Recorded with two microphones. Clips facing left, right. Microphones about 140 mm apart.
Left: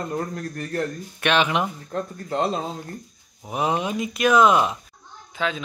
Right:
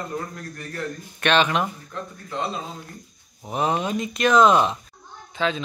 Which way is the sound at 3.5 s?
10° left (ahead or behind).